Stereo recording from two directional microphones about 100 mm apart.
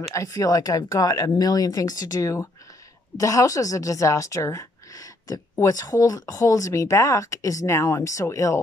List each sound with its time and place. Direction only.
0.1 s speech: 35° left (ahead or behind)